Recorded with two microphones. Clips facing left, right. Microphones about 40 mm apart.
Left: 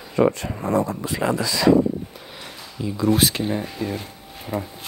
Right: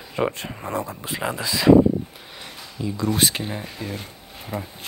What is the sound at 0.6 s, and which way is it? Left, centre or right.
Speech, right.